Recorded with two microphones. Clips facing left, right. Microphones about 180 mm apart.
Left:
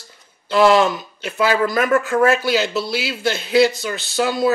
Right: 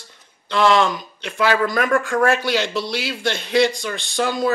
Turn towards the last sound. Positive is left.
turn(degrees=5)  # may be behind; listen again after turning